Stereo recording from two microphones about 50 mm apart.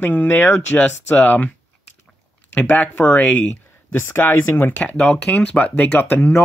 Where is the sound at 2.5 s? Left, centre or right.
Left.